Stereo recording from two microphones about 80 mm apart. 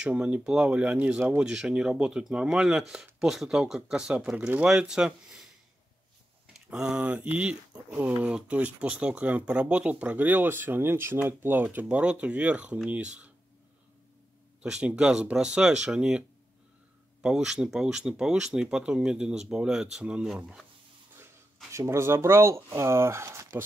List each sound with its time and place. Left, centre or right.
0.0 s speech: centre
6.5 s speech: centre
14.6 s speech: centre
21.7 s speech: right